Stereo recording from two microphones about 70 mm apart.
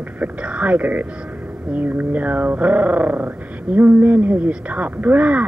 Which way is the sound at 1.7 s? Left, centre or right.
Right.